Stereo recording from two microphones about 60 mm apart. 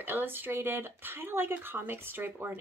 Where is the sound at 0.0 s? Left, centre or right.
Right.